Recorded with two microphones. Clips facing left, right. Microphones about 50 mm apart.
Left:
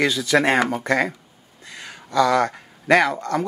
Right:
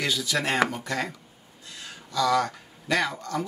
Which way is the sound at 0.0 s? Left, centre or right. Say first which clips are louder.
Left 8 dB; left.